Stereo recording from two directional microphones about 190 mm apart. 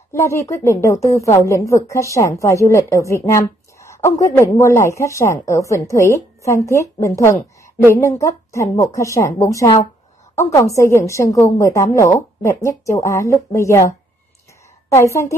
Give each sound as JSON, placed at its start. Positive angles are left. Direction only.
{"t": 0.1, "sound": "a woman's voice", "side_deg": 15}